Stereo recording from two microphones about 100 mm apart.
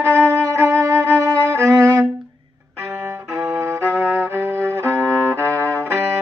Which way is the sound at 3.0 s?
25° right (ahead or behind).